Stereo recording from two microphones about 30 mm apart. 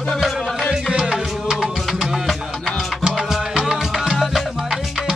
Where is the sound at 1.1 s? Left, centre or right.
Right.